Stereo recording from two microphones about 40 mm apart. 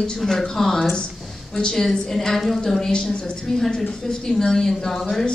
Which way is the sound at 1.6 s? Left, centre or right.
Centre.